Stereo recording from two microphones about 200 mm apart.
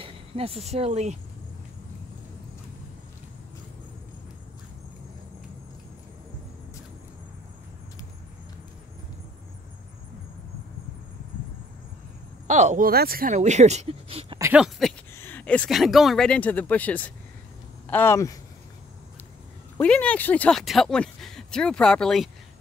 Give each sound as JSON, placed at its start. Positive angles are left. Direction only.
{"t": 0.0, "sound": "speech", "side_deg": -30}
{"t": 12.4, "sound": "speech", "side_deg": -35}
{"t": 14.4, "sound": "speech", "side_deg": -5}
{"t": 15.1, "sound": "speech", "side_deg": 10}
{"t": 19.8, "sound": "speech", "side_deg": 5}